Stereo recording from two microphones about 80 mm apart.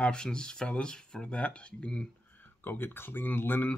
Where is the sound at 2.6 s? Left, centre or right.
Left.